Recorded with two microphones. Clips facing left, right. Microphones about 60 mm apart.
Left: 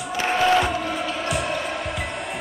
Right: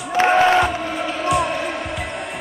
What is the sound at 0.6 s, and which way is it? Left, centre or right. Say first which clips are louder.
Music: right 3 dB; centre.